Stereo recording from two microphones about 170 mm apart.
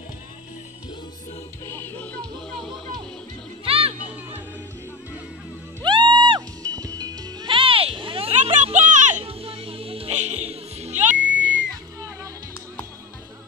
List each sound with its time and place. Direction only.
1.7 s music: 10° left (ahead or behind)
3.6 s music: 35° right (ahead or behind)
5.8 s music: 25° right (ahead or behind)
11.1 s music: 90° right